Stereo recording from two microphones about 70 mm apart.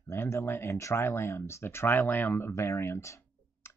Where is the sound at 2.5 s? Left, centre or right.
Left.